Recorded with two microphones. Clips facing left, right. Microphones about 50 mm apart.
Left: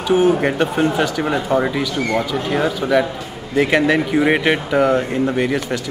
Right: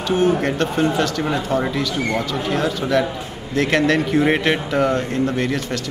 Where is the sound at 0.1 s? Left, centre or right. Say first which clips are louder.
Left 3 dB; centre.